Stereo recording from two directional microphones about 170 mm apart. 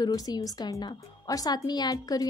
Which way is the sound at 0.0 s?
20° left (ahead or behind).